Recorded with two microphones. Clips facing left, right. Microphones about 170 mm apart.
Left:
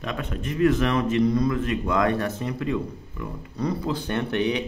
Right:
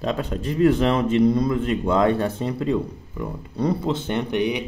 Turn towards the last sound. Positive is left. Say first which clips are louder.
# right 1 dB
turn(degrees=-15)  # may be behind; listen again after turning